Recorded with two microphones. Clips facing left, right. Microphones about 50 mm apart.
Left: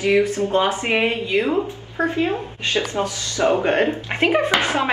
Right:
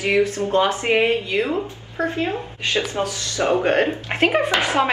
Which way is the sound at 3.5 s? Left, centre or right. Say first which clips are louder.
Even; left.